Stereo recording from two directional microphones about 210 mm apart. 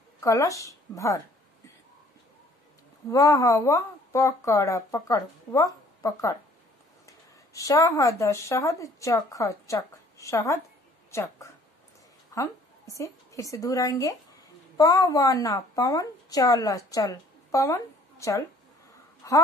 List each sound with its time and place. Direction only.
0.2 s a woman's voice: 15° left (ahead or behind)
3.1 s a woman's voice: 15° left (ahead or behind)
19.2 s a sound: 15° left (ahead or behind)